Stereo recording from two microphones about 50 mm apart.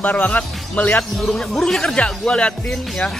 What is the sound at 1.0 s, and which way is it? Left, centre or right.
Speech, centre.